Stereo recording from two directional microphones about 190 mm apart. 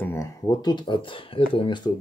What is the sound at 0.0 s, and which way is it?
Speech, 15° left (ahead or behind).